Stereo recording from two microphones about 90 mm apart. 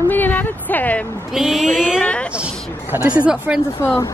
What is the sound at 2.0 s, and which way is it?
Speech, 15° left (ahead or behind).